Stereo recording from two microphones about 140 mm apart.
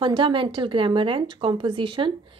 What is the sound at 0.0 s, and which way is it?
A woman's voice, 35° right (ahead or behind).